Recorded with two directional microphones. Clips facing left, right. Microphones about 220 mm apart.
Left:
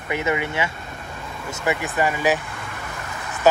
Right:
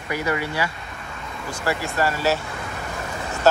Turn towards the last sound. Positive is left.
turn(degrees=15)  # may be behind; listen again after turning